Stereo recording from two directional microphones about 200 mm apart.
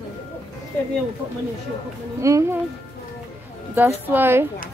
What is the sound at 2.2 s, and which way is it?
Speech, 15° right (ahead or behind).